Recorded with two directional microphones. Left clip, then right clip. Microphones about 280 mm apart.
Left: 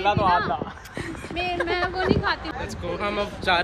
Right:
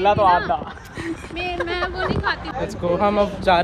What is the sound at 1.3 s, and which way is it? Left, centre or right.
Speech, left.